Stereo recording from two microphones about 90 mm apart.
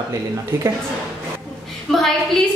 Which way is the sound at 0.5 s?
25° right (ahead or behind).